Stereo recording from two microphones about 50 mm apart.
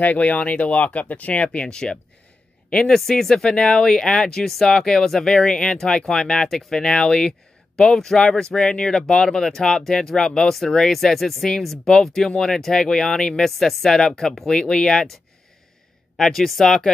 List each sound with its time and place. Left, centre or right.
0.0 s speech: left; by 15.0 s centre
16.2 s speech: centre